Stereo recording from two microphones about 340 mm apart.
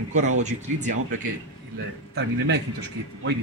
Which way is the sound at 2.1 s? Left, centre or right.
Right.